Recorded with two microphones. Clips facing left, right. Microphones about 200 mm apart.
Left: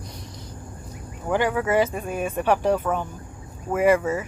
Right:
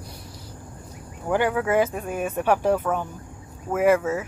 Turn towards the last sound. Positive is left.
turn(degrees=-5)  # may be behind; listen again after turning